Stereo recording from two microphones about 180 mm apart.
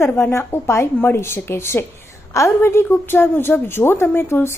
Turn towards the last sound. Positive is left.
turn(degrees=15)  # may be behind; listen again after turning